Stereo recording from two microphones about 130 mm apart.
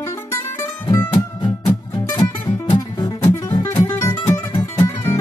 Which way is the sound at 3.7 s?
20° left (ahead or behind).